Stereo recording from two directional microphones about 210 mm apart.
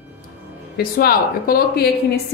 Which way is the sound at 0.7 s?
45° left (ahead or behind).